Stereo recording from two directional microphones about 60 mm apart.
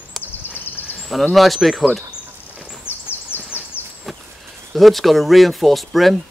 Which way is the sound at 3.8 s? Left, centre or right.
Left.